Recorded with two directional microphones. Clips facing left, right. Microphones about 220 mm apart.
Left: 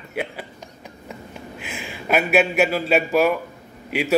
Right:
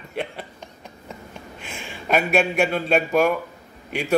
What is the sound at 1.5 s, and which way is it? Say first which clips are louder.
A man's voice: left 3 dB; 5° left (ahead or behind).